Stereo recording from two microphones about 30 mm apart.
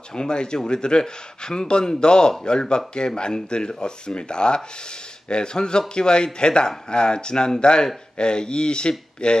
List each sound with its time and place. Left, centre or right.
0.1 s speech: left